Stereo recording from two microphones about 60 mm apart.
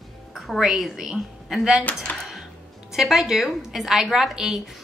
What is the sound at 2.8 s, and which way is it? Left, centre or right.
A woman's voice, centre.